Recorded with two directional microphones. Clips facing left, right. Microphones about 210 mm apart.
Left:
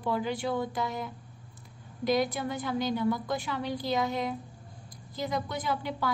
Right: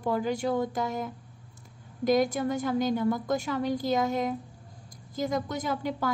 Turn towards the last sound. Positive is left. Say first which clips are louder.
# right 2 dB
turn(degrees=-45)  # may be behind; listen again after turning